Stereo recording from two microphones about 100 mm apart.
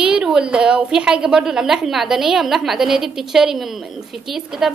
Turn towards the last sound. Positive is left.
turn(degrees=-5)  # may be behind; listen again after turning